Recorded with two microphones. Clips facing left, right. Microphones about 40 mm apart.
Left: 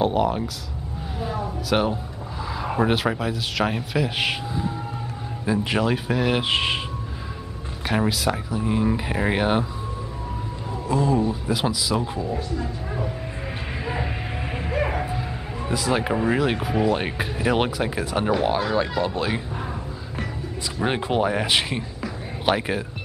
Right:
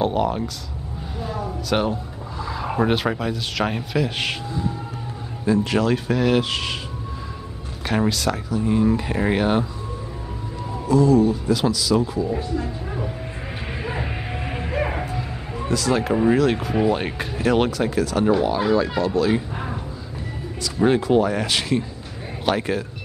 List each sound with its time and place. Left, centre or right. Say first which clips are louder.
0.0 s speech: even; centre
5.4 s speech: right 3 dB; centre
6.4 s speech: left 3 dB; left
7.8 s speech: right 1 dB; centre
10.9 s speech: right 5 dB; left
12.3 s speech: right 3 dB; centre
13.8 s music: even; centre
15.7 s speech: right 2 dB; centre
19.5 s a sound: right 1 dB; centre
20.6 s speech: right 6 dB; left